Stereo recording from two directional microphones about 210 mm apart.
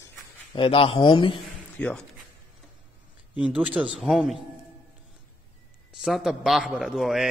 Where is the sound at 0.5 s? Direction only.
25° left (ahead or behind).